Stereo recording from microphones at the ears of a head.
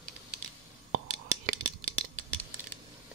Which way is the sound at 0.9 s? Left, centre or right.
Right.